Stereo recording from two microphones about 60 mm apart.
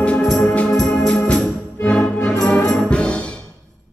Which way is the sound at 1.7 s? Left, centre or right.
Centre.